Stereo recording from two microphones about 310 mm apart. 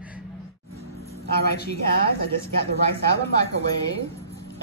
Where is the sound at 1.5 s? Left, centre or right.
Left.